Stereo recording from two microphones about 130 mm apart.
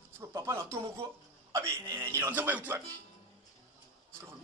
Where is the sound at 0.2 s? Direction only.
20° right (ahead or behind).